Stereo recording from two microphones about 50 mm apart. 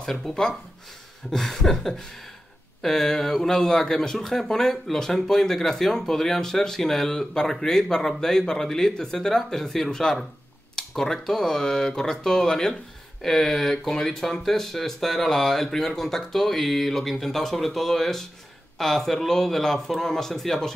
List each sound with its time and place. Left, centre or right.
0.0 s speech: centre